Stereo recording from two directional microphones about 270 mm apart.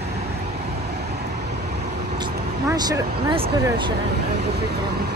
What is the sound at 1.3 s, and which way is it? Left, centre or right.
Vehicle, right.